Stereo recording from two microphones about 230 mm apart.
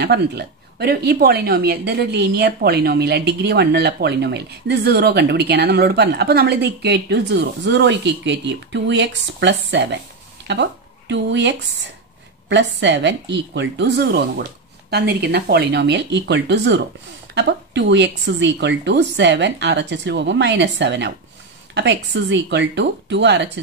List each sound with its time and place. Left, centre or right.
0.0 s speech: right